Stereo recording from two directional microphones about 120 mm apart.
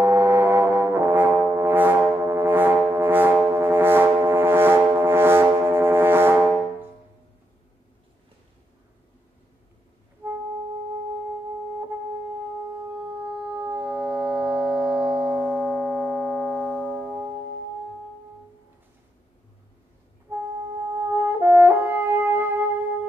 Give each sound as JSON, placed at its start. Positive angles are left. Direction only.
{"t": 0.0, "sound": "brass instrument", "side_deg": -20}
{"t": 10.2, "sound": "music", "side_deg": -20}
{"t": 13.3, "sound": "music", "side_deg": -10}
{"t": 16.9, "sound": "music", "side_deg": -15}
{"t": 20.3, "sound": "music", "side_deg": -20}
{"t": 21.0, "sound": "french horn", "side_deg": -20}